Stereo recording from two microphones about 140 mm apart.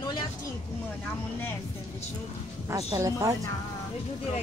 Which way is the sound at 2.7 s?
25° right (ahead or behind).